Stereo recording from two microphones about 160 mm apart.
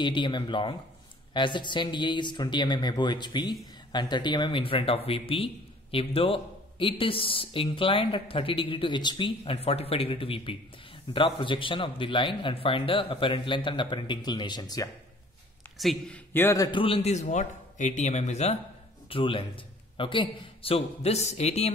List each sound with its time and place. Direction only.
0.0 s a man's voice: 30° left (ahead or behind)
15.8 s speech: centre (ahead or behind)
16.3 s speech: 20° left (ahead or behind)
16.8 s speech: 40° left (ahead or behind)
19.0 s a man's voice: 35° left (ahead or behind)